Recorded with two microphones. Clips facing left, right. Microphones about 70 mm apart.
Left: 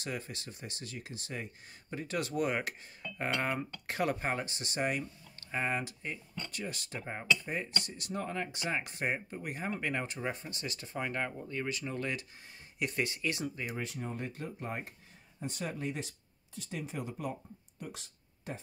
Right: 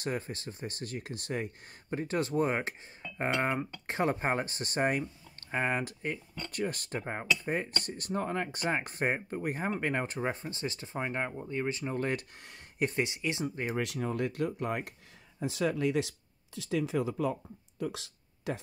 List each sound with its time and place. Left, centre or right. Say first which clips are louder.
0.0 s speech: right 5 dB; right
2.0 s speech: right 4 dB; right
13.0 s speech: right 2 dB; centre
13.7 s speech: right 7 dB; right
15.4 s speech: right 8 dB; right
17.7 s a sound: right 10 dB; right